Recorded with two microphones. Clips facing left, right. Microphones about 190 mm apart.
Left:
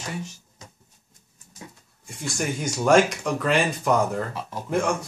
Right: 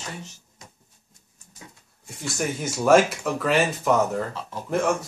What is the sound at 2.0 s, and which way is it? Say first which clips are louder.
Speech: even; centre (ahead or behind).